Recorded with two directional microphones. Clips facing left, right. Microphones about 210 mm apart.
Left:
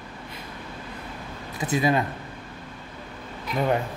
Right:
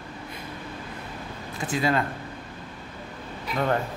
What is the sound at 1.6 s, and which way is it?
Speech, 20° left (ahead or behind).